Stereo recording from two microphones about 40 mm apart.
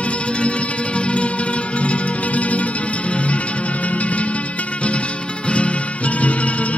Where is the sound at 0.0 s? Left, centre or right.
Left.